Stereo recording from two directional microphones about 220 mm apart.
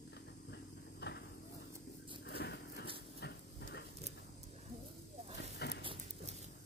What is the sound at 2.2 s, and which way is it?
Vehicle, 50° left (ahead or behind).